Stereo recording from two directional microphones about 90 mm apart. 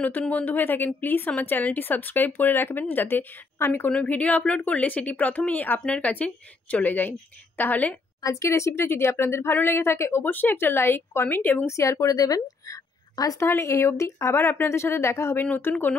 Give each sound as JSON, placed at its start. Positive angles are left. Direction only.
{"t": 0.3, "sound": "speech", "side_deg": 20}
{"t": 3.9, "sound": "speech", "side_deg": 15}
{"t": 8.2, "sound": "speech", "side_deg": 35}
{"t": 11.7, "sound": "a woman's voice", "side_deg": 35}
{"t": 15.4, "sound": "speech", "side_deg": 15}